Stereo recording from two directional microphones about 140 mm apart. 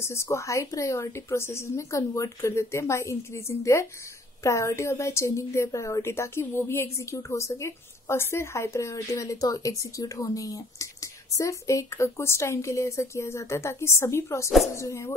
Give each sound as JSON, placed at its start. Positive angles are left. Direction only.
{"t": 0.0, "sound": "a woman's voice", "side_deg": 20}